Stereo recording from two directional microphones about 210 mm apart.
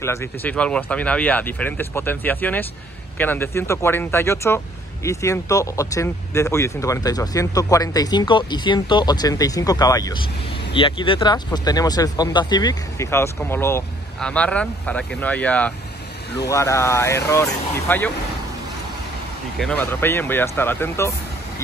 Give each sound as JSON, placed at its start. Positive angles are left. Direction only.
{"t": 0.0, "sound": "speech", "side_deg": 10}
{"t": 19.6, "sound": "speech", "side_deg": 5}